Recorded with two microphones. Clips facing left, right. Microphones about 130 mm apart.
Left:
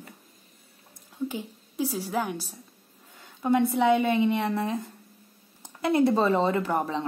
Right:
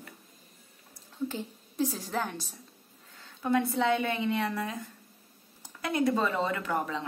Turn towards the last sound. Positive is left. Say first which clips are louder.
# left 5 dB
turn(degrees=25)  # may be behind; listen again after turning